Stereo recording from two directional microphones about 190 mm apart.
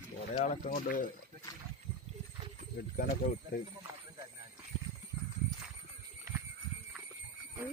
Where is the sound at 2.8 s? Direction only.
50° left (ahead or behind).